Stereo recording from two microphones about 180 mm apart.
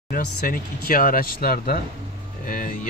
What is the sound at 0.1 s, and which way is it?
Speech, 55° left (ahead or behind).